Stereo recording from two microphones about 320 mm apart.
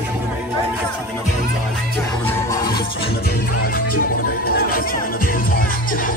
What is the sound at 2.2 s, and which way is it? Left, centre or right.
Music, centre.